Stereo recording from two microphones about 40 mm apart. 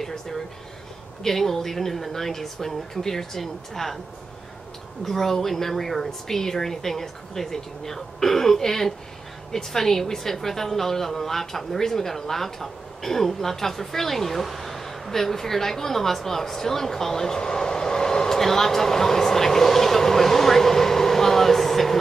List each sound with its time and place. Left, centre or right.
0.0 s a woman's voice: centre
5.0 s a woman's voice: centre